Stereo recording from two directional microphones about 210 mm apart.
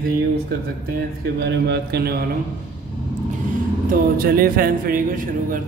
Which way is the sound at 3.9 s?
45° right (ahead or behind).